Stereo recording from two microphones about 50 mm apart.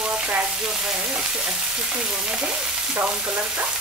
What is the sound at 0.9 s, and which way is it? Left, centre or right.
Frying, centre.